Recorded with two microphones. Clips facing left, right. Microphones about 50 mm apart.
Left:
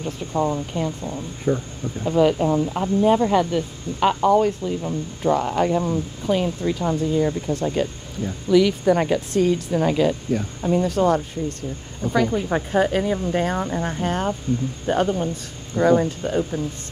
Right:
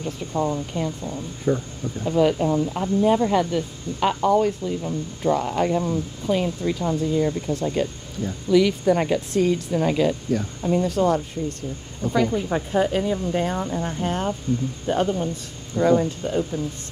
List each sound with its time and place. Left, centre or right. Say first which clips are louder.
0.3 s speech: left 2 dB; left
1.5 s speech: even; centre
2.0 s speech: left 2 dB; left
8.5 s speech: left 1 dB; left
9.7 s speech: left 1 dB; left
10.8 s speech: left 2 dB; left
12.0 s speech: left 1 dB; centre
12.4 s speech: left 2 dB; left
13.3 s speech: left 2 dB; left
14.5 s speech: right 1 dB; left
14.9 s speech: left 2 dB; left
15.7 s speech: left 1 dB; left